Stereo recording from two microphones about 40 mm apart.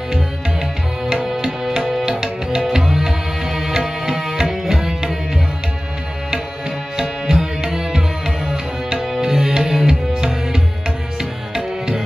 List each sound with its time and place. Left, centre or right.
0.1 s music: centre
2.0 s music: centre
7.0 s tabla: centre
11.1 s music: centre